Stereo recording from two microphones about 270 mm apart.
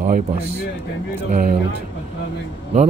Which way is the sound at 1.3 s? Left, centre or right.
Right.